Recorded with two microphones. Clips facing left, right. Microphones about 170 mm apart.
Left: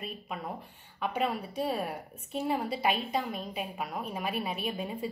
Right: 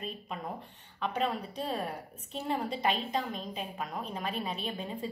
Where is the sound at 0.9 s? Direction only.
10° left (ahead or behind).